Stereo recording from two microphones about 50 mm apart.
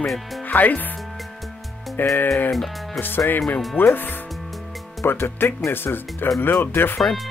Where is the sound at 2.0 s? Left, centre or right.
Left.